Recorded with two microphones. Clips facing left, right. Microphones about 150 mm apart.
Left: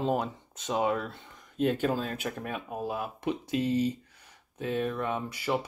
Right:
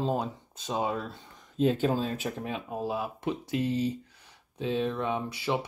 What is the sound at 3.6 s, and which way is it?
Speech, 70° left (ahead or behind).